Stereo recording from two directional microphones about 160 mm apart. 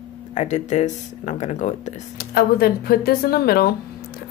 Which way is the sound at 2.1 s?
70° left (ahead or behind).